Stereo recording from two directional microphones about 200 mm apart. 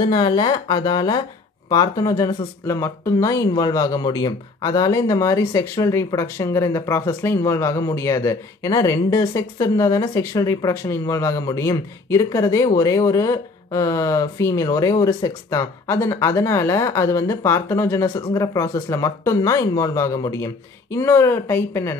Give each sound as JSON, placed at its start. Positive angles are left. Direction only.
{"t": 0.1, "sound": "speech", "side_deg": 20}